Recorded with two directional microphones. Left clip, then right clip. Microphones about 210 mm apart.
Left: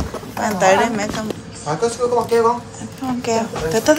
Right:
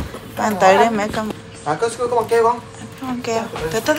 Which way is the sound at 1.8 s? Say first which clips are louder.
Left 2 dB; 20° right (ahead or behind).